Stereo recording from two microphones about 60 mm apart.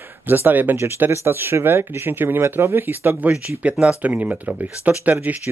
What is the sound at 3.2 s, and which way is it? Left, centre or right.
Speech, right.